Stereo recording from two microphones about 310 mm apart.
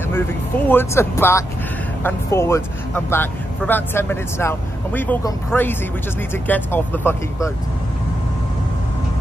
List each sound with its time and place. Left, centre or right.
0.1 s speech: centre